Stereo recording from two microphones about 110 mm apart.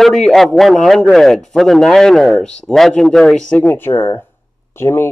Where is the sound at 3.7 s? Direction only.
20° left (ahead or behind).